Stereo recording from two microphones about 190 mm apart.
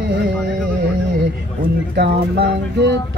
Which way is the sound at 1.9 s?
55° right (ahead or behind).